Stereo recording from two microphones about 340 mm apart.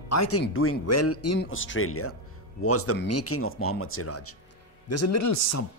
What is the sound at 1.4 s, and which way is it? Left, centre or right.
Speech, left.